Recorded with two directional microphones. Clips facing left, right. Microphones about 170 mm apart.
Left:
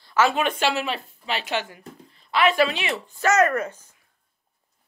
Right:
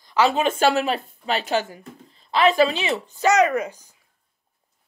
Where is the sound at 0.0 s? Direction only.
15° right (ahead or behind).